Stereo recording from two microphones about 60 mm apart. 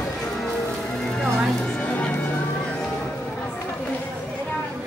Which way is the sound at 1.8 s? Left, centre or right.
Left.